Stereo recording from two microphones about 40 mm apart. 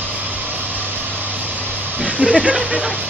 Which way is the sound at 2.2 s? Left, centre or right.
Right.